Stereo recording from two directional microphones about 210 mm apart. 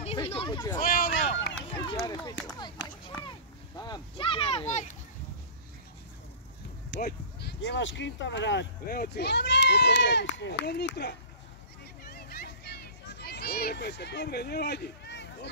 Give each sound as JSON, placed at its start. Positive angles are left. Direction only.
{"t": 0.0, "sound": "speech", "side_deg": 25}
{"t": 0.7, "sound": "speech", "side_deg": 40}
{"t": 2.0, "sound": "speech", "side_deg": 20}
{"t": 2.8, "sound": "a sound", "side_deg": 60}
{"t": 3.2, "sound": "speech", "side_deg": 20}
{"t": 7.0, "sound": "speech", "side_deg": 50}
{"t": 12.0, "sound": "a sound", "side_deg": 45}